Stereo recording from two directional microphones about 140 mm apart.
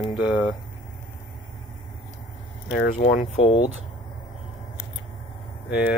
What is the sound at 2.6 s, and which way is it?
Speech, 80° left.